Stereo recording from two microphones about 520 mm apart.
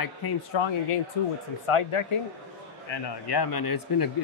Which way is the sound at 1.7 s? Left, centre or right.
Left.